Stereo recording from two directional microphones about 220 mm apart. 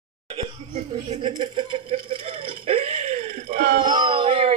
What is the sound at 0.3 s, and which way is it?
Laughter, 30° right (ahead or behind).